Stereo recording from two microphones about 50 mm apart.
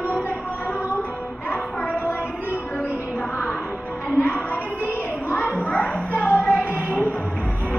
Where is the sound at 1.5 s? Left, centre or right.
Left.